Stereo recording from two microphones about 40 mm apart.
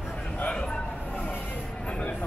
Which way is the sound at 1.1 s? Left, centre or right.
Left.